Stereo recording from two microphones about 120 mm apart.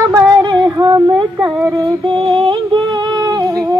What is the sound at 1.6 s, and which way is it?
Female singing, 30° right (ahead or behind).